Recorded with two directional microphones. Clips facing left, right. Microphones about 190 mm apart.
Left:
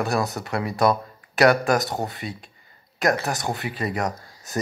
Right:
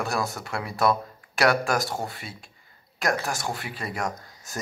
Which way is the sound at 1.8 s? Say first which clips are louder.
Left 3 dB; 20° left (ahead or behind).